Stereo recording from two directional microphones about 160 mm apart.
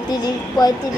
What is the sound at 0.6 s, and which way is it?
Speech, 25° left (ahead or behind).